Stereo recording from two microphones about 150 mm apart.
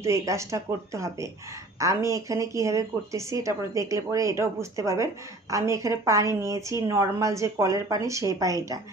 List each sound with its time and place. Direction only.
0.0 s speech: 20° right (ahead or behind)